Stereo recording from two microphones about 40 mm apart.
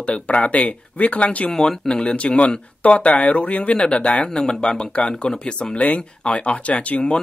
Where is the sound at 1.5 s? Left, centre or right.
Centre.